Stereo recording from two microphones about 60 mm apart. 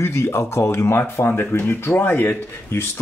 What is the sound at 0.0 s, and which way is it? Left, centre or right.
Speech, left.